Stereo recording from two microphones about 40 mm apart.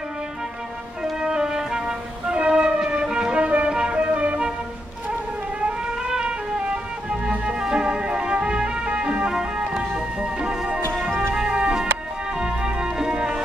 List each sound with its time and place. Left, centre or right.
1.2 s music: centre
3.3 s music: right
5.6 s music: right